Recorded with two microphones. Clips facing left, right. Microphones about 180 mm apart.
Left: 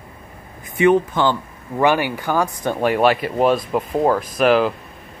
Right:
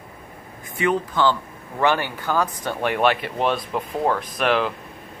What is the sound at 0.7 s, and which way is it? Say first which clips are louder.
Speech: left 6 dB; 20° left (ahead or behind).